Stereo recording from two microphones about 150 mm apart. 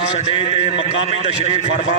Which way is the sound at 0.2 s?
40° left (ahead or behind).